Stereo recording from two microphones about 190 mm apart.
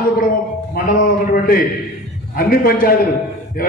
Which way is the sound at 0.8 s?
45° left (ahead or behind).